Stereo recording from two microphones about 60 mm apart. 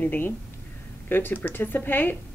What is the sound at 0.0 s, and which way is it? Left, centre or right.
A woman's voice, left.